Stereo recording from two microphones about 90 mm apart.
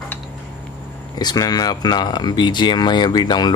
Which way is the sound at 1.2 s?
50° left (ahead or behind).